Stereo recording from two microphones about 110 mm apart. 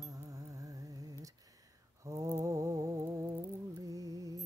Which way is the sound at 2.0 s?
30° right (ahead or behind).